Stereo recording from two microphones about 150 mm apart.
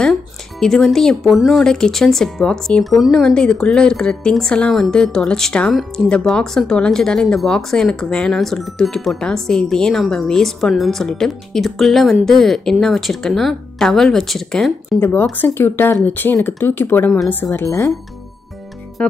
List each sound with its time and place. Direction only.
0.0 s speech: 5° left (ahead or behind)
15.0 s speech: 15° left (ahead or behind)
19.0 s music: 10° left (ahead or behind)